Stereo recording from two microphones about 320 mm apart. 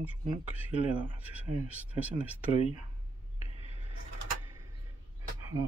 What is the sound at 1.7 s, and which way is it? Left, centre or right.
Speech, centre.